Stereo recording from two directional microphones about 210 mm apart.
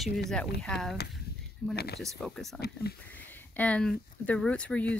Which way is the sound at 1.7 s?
50° left (ahead or behind).